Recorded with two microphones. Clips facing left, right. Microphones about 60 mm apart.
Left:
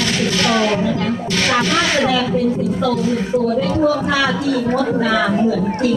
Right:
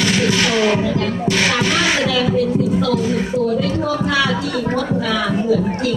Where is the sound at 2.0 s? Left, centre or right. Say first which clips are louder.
Left 1 dB; left.